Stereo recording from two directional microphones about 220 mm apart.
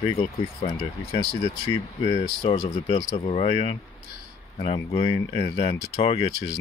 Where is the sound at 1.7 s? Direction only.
25° left (ahead or behind).